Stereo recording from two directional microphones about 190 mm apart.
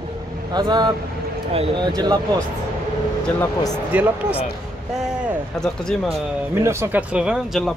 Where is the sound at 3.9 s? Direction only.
10° right (ahead or behind).